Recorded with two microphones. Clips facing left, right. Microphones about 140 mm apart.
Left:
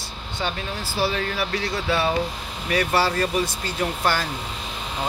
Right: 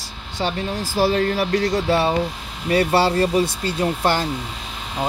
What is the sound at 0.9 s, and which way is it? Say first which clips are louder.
Speech: right 6 dB; 40° right (ahead or behind).